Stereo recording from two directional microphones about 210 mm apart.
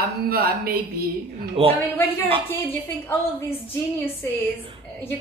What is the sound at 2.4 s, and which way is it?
Speech, 10° left (ahead or behind).